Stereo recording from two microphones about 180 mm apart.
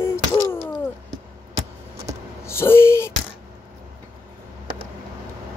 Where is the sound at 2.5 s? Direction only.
15° left (ahead or behind).